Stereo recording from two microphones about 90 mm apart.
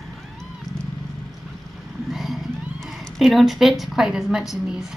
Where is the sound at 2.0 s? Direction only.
Centre (ahead or behind).